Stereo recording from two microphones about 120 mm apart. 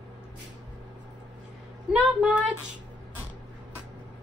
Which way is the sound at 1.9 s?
10° right (ahead or behind).